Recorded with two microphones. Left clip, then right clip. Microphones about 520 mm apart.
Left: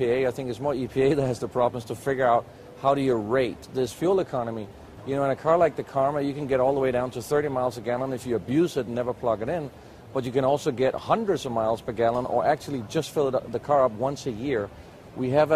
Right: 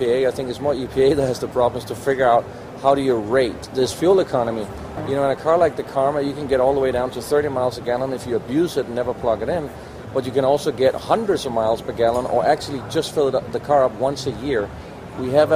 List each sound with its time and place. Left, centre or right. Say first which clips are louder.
0.0 s speech: right 5 dB; left